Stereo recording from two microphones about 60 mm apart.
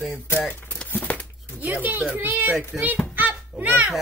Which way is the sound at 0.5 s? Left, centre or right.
Left.